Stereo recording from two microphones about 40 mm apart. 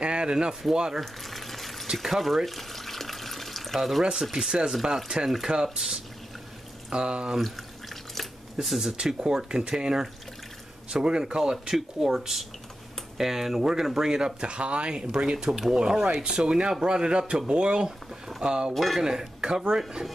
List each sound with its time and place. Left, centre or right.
0.0 s speech: right
1.0 s water: centre
4.0 s speech: centre
7.3 s drip: centre
8.6 s speech: centre
8.9 s speech: centre
11.5 s speech: centre
18.7 s speech: centre
18.9 s speech: centre